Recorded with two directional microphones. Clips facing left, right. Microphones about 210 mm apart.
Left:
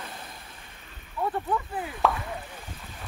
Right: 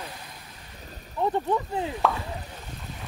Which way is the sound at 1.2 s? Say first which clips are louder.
Right 3 dB; 25° right (ahead or behind).